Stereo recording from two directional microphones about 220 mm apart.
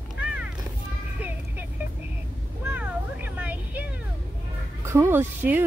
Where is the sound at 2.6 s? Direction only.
10° right (ahead or behind).